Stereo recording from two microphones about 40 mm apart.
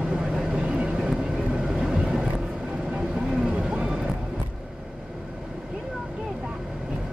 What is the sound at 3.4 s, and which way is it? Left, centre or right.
Vehicle, centre.